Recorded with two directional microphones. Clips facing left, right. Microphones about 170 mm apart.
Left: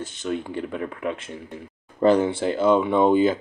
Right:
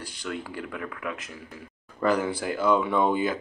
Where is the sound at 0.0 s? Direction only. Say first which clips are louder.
Left 6 dB; 25° left (ahead or behind).